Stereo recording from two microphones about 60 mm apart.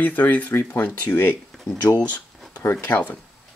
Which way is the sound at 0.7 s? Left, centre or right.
Left.